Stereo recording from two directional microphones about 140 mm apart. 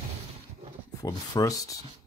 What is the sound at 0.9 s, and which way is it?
Speech, 25° left (ahead or behind).